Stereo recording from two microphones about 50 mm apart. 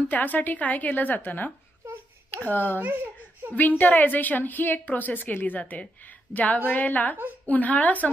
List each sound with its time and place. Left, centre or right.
0.1 s a woman's voice: left
2.5 s a child's voice: left